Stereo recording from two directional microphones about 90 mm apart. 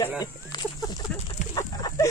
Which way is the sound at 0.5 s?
50° left (ahead or behind).